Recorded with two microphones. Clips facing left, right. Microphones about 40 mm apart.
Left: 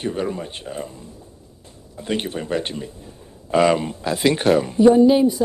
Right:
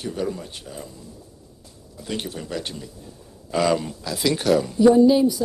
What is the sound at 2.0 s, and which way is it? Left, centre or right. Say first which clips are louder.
Speech: left 5 dB; left.